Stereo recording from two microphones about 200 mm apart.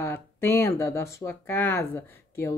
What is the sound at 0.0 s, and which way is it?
Speech, 10° left (ahead or behind).